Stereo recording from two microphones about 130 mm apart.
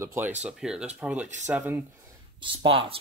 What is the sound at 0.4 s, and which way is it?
Speech, 5° right (ahead or behind).